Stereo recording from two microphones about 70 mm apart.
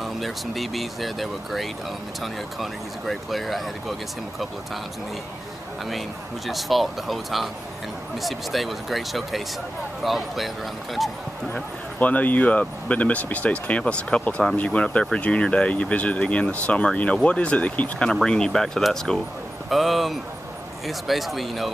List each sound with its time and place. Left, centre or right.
0.0 s speech: centre
5.9 s speech: centre
11.5 s speech: left; by 21.7 s centre